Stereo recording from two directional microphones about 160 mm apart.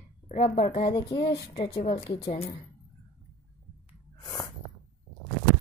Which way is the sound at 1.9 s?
35° left (ahead or behind).